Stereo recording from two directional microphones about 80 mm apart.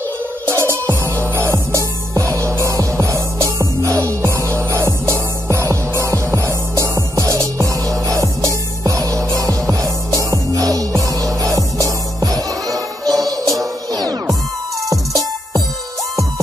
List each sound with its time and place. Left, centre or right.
0.5 s music: right
12.7 s music: centre
13.9 s music: right